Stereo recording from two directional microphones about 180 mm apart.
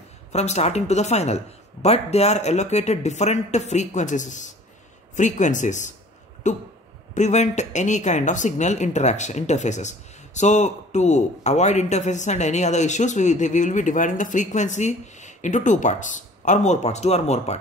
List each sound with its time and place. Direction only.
0.3 s speech: 40° left (ahead or behind)